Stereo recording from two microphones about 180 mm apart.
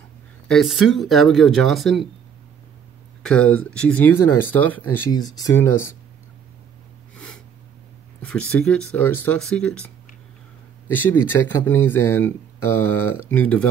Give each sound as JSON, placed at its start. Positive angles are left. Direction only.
{"t": 0.5, "sound": "speech", "side_deg": 0}
{"t": 3.2, "sound": "speech", "side_deg": 5}
{"t": 5.1, "sound": "speech", "side_deg": 20}
{"t": 8.2, "sound": "speech", "side_deg": 5}
{"t": 10.9, "sound": "speech", "side_deg": 10}